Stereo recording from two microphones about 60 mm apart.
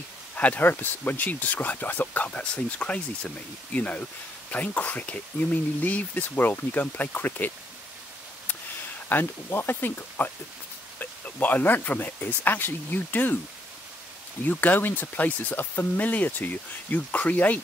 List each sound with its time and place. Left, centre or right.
0.4 s speech: left
2.2 s speech: centre
9.1 s speech: left
14.4 s speech: left